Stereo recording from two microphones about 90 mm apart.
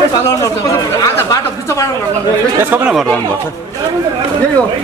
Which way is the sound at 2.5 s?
25° right (ahead or behind).